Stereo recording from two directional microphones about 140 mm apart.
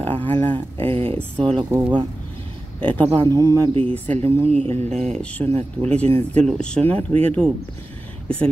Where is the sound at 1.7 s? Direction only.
15° right (ahead or behind).